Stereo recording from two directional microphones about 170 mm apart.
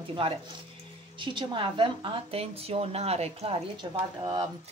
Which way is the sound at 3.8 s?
25° right (ahead or behind).